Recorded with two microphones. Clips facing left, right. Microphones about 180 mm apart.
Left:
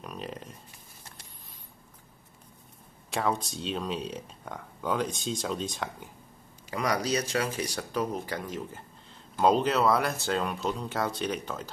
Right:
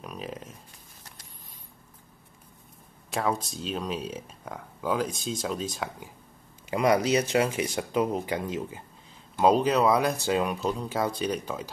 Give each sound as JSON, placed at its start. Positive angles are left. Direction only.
{"t": 0.0, "sound": "a sound", "side_deg": 0}
{"t": 3.1, "sound": "speech", "side_deg": 0}
{"t": 6.7, "sound": "speech", "side_deg": -25}